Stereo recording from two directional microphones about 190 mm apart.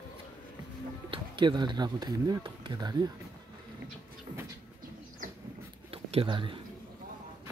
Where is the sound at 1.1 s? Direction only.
25° right (ahead or behind).